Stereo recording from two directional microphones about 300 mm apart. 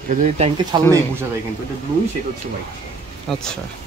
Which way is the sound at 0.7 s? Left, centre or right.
Centre.